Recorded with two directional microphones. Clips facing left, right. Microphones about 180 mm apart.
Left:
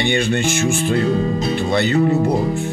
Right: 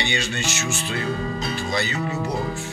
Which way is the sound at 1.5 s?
60° left (ahead or behind).